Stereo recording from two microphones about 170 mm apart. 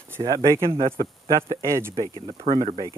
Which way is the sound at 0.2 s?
25° right (ahead or behind).